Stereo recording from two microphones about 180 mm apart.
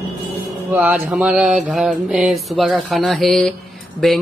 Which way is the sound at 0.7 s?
10° right (ahead or behind).